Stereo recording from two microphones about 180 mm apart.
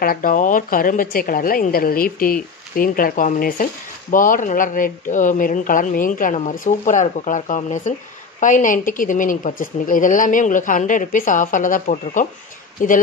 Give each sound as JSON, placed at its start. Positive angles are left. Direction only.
{"t": 0.0, "sound": "a woman's voice", "side_deg": 50}